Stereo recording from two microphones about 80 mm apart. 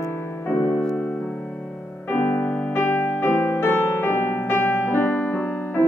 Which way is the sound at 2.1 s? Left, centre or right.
Left.